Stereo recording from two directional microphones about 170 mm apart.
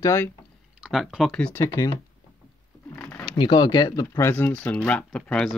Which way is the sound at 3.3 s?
25° left (ahead or behind).